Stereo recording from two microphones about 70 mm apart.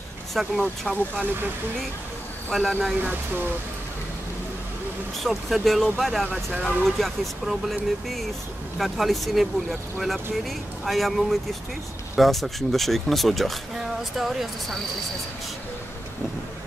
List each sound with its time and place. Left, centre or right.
0.3 s speech: centre
2.5 s speech: centre
3.0 s speech: right
5.2 s speech: centre